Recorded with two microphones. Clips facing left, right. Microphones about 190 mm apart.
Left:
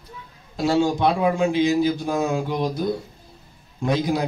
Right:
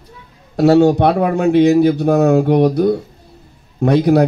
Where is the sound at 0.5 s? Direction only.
65° right (ahead or behind).